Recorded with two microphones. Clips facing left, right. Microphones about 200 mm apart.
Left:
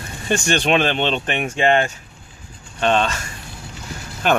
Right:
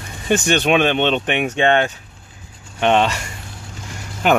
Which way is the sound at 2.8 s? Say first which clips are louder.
Right 3 dB; 15° right (ahead or behind).